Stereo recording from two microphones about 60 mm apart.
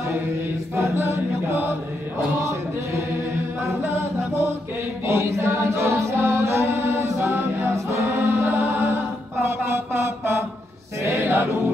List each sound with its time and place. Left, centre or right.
0.7 s chant: right
3.8 s chant: right
9.4 s mantra: right
11.0 s choir: right